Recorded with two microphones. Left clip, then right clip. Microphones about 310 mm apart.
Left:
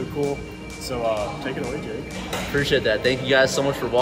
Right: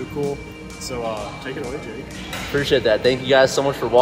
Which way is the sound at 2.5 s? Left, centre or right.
Centre.